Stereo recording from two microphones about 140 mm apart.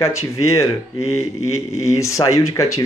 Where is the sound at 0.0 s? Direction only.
20° left (ahead or behind).